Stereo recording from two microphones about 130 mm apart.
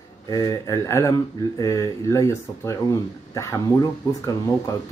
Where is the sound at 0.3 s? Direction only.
25° left (ahead or behind).